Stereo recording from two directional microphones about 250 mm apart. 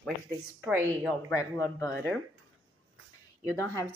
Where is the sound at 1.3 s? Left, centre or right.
Centre.